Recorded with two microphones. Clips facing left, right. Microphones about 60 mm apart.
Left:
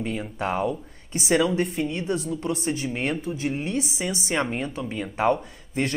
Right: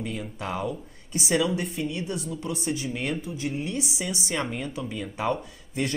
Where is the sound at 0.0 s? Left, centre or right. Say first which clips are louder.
Left 5 dB; left.